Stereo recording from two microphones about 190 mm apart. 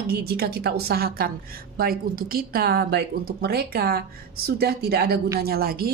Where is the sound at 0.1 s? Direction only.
55° right (ahead or behind).